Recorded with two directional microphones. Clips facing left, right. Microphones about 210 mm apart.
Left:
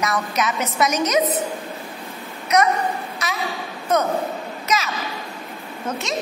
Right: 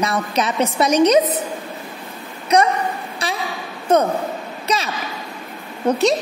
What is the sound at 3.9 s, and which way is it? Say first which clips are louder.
Speech: right 4 dB; 30° right (ahead or behind).